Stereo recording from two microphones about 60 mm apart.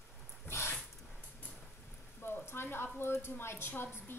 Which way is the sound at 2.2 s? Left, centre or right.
Left.